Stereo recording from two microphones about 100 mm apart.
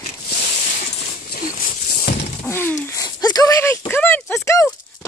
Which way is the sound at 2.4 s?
20° left (ahead or behind).